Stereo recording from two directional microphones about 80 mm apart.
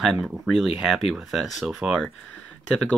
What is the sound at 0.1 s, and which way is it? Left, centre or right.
Speech, centre.